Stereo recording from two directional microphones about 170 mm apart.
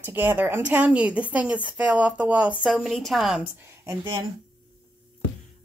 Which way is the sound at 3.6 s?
25° right (ahead or behind).